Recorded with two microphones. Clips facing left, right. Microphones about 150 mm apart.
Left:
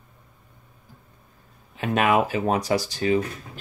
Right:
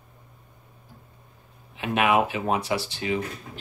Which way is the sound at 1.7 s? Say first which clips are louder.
Left 1 dB; 40° left (ahead or behind).